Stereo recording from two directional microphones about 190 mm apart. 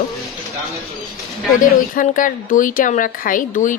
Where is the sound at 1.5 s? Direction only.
45° left (ahead or behind).